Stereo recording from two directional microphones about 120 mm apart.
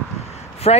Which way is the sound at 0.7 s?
55° left (ahead or behind).